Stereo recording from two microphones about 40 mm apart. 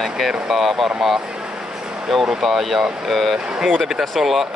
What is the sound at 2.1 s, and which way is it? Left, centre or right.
Speech, centre.